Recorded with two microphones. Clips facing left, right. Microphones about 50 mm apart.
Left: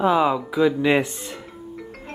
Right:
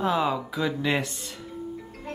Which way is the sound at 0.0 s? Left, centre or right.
Centre.